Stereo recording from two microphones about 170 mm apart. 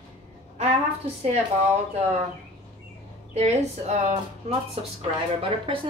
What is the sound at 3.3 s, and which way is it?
A woman's voice, 40° right (ahead or behind).